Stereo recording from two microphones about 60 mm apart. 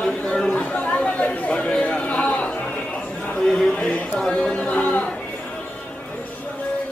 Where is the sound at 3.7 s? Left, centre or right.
Left.